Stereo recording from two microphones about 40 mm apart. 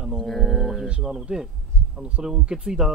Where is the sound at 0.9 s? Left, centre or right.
Centre.